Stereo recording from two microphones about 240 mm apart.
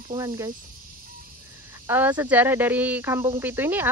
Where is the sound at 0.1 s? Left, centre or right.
Centre.